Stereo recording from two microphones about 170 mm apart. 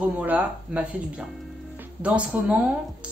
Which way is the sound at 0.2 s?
10° right (ahead or behind).